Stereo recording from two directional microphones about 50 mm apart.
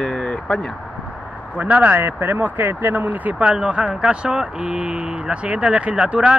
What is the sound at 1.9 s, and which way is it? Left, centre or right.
Speech, right.